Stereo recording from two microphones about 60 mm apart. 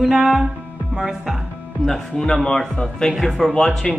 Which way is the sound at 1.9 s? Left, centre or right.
Centre.